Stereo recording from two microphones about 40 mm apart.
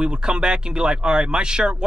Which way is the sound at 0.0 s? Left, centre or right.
Right.